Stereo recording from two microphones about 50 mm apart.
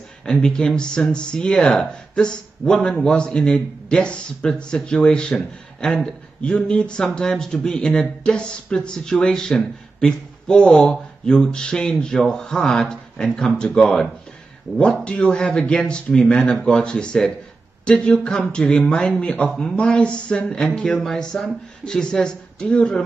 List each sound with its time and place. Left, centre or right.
0.2 s speech: centre
13.8 s speech: centre
14.8 s speech: left